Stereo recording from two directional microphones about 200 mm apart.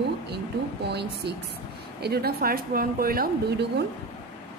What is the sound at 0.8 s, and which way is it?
A woman's voice, 55° right (ahead or behind).